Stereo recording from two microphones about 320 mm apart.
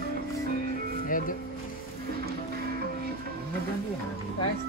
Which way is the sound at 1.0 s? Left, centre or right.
Left.